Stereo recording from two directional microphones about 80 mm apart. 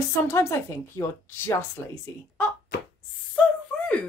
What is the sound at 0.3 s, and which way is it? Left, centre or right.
A woman's voice, left.